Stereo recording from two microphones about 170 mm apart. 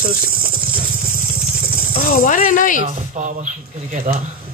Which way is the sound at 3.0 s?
45° right (ahead or behind).